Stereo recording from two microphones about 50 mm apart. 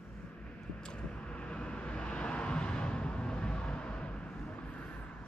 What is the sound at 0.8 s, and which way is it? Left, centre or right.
Vehicle, centre.